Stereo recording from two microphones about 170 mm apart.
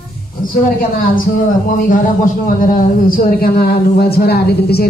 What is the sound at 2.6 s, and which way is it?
Speech, 60° left (ahead or behind).